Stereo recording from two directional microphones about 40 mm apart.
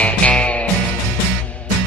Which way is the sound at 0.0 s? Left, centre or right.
Left.